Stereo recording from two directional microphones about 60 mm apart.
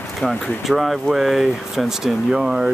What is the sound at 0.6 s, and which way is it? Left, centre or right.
Speech, centre.